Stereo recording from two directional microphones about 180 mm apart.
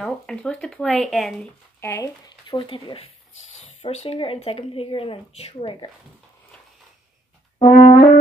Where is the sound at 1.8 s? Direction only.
15° left (ahead or behind).